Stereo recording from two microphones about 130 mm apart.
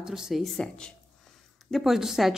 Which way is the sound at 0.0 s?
5° right (ahead or behind).